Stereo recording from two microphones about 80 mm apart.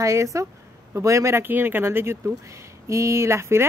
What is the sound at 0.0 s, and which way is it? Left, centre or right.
Speech, right.